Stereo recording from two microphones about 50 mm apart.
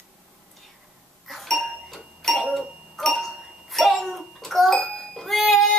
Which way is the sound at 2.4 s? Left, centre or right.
Centre.